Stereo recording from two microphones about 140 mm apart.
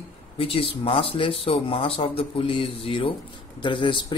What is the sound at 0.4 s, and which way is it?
Speech, 40° left (ahead or behind).